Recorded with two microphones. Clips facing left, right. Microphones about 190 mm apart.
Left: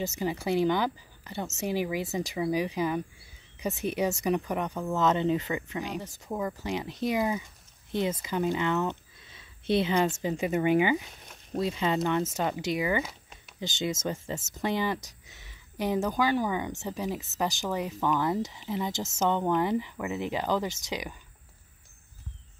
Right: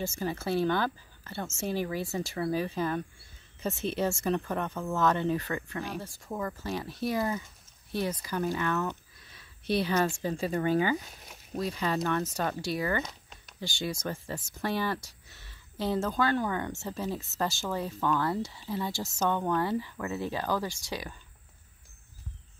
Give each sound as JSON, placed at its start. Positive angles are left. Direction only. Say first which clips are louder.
{"t": 0.0, "sound": "speech", "louder": "left 2 dB", "side_deg": 15}
{"t": 13.6, "sound": "speech", "louder": "left 3 dB", "side_deg": 20}